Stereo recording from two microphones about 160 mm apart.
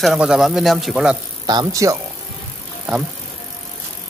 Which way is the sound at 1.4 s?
25° right (ahead or behind).